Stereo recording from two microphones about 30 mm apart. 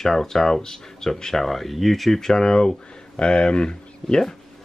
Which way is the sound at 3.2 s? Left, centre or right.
Left.